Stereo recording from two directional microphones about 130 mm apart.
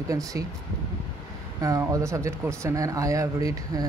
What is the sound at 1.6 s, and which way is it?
Speech, 25° right (ahead or behind).